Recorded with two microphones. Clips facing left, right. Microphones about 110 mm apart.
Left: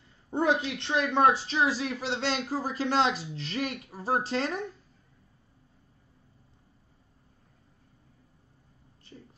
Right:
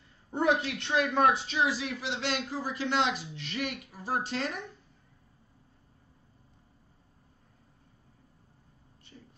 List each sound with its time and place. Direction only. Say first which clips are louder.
0.3 s speech: left 1 dB; 25° left (ahead or behind)